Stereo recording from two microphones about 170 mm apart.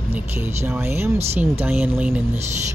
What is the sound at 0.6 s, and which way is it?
Speech, 15° right (ahead or behind).